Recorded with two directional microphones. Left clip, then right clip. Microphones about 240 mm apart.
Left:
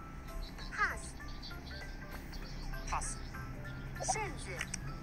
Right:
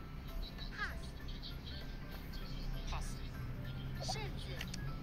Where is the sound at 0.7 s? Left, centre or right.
Centre.